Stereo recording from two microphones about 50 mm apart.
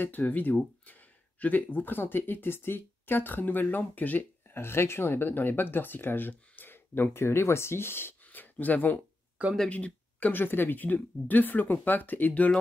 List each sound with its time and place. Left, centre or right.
0.0 s speech: left
4.6 s speech: left
8.2 s a sound: left
9.7 s speech: left
10.3 s speech: left